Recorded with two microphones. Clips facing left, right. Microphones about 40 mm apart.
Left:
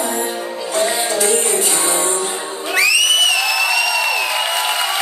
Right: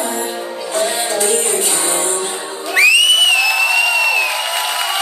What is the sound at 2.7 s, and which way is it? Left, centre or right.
Crowd, right.